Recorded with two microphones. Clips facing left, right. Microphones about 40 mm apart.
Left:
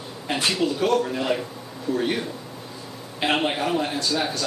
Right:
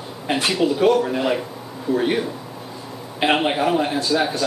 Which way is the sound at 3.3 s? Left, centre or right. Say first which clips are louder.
Right 3 dB; centre.